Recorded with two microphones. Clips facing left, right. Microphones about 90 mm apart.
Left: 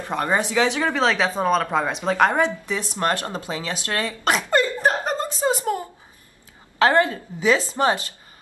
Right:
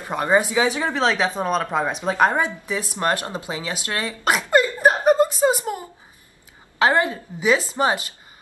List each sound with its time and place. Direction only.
0.1 s a woman's voice: 10° right (ahead or behind)
0.9 s a woman's voice: 5° right (ahead or behind)
3.8 s a sound: 20° right (ahead or behind)
5.7 s a woman's voice: 25° right (ahead or behind)